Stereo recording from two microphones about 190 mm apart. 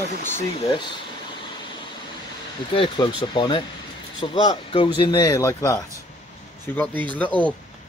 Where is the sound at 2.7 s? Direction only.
25° left (ahead or behind); by 7.5 s 10° left (ahead or behind).